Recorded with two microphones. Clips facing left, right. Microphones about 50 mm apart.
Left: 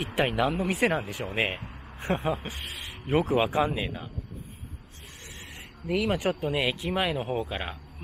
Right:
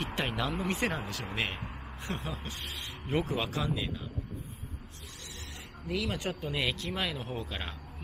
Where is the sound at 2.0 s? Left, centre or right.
Left.